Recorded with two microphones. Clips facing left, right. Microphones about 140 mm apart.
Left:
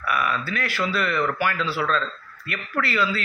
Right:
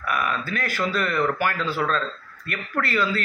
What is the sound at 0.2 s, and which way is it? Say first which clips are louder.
Speech: left 1 dB; 45° right (ahead or behind).